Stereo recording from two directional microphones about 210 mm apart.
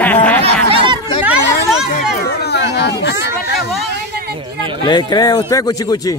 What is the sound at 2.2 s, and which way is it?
Speech, 50° left (ahead or behind).